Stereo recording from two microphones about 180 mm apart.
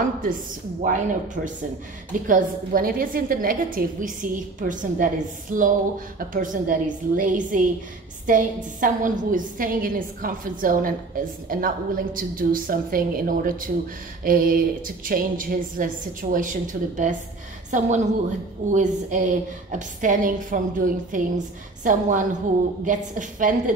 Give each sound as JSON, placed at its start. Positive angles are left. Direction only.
{"t": 0.8, "sound": "a woman's voice", "side_deg": -45}